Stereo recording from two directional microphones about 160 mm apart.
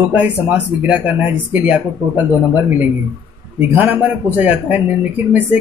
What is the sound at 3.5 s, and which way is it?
Speech, 10° right (ahead or behind).